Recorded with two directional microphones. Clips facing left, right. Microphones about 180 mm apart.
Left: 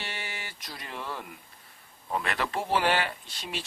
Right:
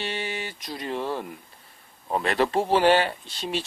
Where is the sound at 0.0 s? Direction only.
20° right (ahead or behind).